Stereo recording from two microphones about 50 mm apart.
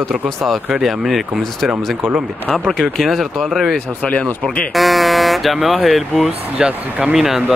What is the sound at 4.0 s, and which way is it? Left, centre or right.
Speech, left.